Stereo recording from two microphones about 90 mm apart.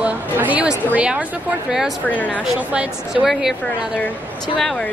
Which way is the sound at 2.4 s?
10° right (ahead or behind).